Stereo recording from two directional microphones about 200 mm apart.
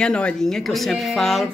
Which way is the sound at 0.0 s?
5° left (ahead or behind).